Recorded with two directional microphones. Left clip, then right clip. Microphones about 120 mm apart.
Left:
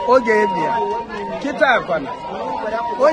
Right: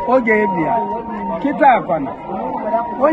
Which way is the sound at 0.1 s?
30° left (ahead or behind).